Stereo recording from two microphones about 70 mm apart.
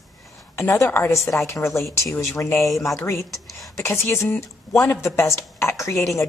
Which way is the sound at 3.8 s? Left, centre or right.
Left.